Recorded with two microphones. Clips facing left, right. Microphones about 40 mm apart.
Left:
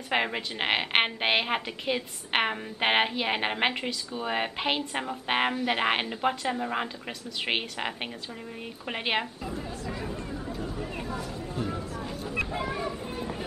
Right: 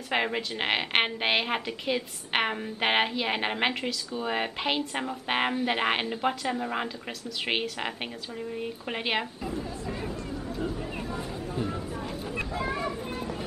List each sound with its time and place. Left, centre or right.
0.1 s speech: centre
10.7 s a sound: centre
11.1 s a sound: right
12.0 s vehicle: centre
12.4 s vehicle: left
12.8 s vehicle: centre